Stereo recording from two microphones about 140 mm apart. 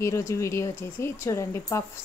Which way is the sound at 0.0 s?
20° left (ahead or behind).